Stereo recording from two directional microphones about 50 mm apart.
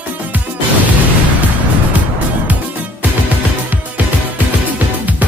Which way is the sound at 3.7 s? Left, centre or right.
Right.